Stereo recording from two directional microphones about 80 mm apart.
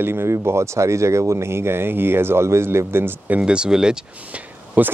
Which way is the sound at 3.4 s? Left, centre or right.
Centre.